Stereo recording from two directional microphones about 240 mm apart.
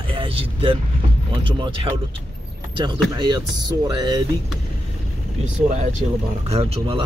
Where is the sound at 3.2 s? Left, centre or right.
Centre.